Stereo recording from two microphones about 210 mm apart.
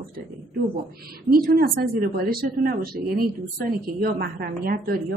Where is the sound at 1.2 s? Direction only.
45° right (ahead or behind).